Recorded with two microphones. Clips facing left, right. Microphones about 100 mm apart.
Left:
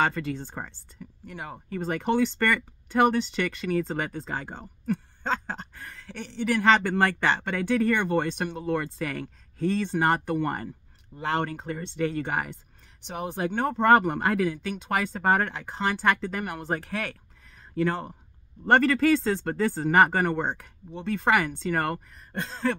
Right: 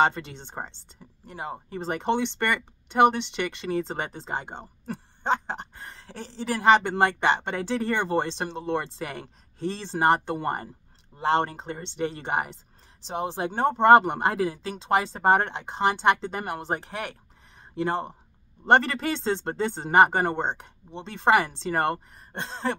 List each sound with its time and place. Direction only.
0.0 s speech: 25° right (ahead or behind)
6.6 s speech: 20° right (ahead or behind)